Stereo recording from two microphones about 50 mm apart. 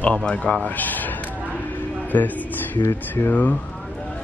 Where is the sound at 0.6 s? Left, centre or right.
Left.